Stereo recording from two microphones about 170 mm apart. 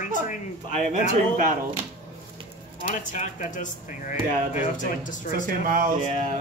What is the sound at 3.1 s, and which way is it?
Speech, 45° left (ahead or behind).